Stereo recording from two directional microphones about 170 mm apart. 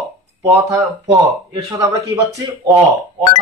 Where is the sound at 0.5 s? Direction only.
20° right (ahead or behind).